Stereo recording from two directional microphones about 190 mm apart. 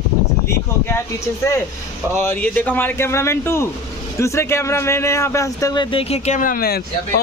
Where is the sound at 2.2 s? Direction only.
10° left (ahead or behind).